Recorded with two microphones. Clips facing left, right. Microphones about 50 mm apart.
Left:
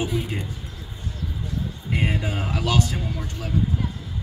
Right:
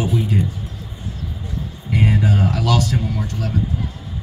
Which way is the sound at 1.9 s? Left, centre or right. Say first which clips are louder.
Right 7 dB; centre.